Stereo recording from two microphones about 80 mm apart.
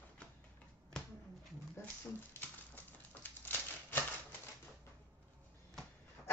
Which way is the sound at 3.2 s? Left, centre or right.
Left.